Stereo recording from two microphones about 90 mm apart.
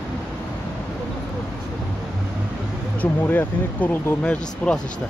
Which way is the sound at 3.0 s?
20° left (ahead or behind).